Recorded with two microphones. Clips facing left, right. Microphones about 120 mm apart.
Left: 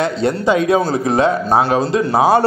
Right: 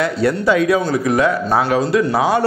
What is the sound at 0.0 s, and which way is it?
A man's voice, 25° left (ahead or behind).